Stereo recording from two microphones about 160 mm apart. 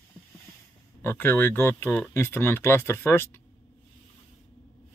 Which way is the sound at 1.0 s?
10° left (ahead or behind).